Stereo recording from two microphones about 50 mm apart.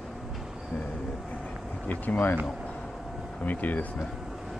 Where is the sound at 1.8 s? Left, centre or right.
Left.